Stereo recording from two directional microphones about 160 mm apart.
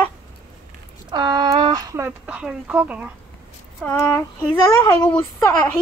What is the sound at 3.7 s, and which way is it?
Speech, 5° left (ahead or behind).